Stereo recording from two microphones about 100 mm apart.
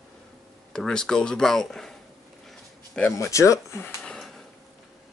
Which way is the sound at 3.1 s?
30° left (ahead or behind).